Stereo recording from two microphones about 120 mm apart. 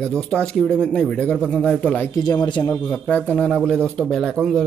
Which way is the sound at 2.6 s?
25° left (ahead or behind).